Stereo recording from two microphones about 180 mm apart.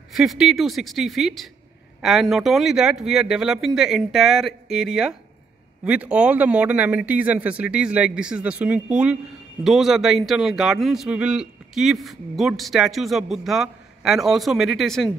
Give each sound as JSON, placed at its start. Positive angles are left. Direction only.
{"t": 0.1, "sound": "speech", "side_deg": 0}